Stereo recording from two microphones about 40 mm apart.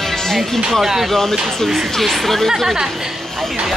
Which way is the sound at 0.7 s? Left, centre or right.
Centre.